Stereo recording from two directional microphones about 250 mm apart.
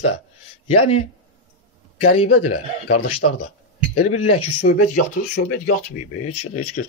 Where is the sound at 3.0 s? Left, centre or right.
Left.